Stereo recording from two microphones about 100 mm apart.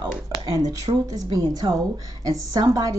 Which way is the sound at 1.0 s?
40° right (ahead or behind).